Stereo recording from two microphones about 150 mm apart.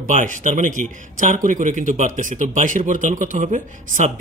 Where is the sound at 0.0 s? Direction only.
60° right (ahead or behind).